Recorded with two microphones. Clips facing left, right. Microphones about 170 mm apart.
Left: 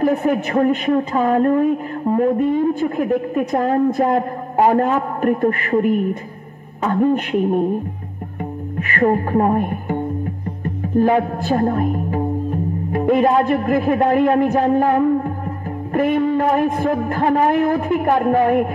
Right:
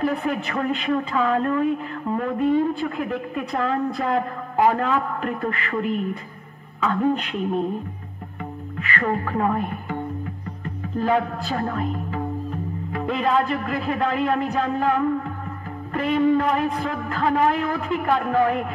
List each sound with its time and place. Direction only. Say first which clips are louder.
0.0 s speech: left 7 dB; 45° left (ahead or behind)
8.4 s a woman's voice: left 7 dB; 45° left (ahead or behind)